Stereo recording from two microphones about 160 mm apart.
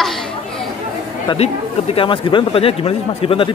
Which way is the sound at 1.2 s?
40° left (ahead or behind).